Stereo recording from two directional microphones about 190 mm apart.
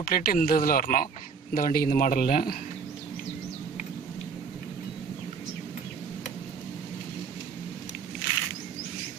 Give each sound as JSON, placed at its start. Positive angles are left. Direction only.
{"t": 0.0, "sound": "a man's voice", "side_deg": 50}